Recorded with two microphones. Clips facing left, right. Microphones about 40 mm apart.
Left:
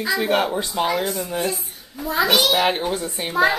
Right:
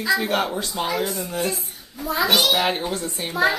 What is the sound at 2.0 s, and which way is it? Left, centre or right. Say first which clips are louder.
Speech: left 2 dB; left.